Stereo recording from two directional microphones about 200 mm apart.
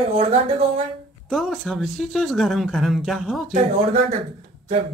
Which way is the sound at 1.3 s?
Centre (ahead or behind).